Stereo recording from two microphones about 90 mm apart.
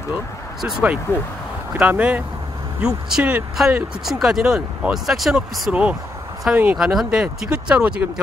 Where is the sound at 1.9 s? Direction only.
15° right (ahead or behind).